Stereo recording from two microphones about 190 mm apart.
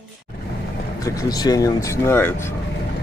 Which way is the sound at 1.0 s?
20° left (ahead or behind).